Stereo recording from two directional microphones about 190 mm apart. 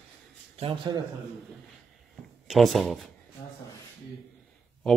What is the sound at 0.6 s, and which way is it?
Speech, 30° right (ahead or behind).